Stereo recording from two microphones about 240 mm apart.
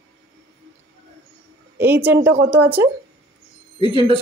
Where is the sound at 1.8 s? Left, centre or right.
Centre.